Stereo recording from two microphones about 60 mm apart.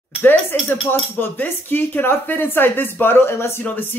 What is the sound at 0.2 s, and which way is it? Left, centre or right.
Speech, left.